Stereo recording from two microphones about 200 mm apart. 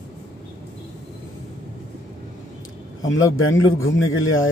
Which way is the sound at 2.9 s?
85° left.